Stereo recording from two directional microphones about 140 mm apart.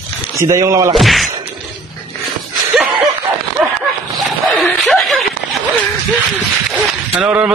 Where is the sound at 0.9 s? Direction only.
Centre (ahead or behind).